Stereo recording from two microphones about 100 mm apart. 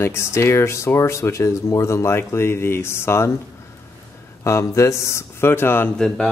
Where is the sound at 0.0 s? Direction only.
25° left (ahead or behind).